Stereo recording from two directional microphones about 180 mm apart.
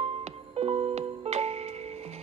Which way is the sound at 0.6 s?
35° right (ahead or behind).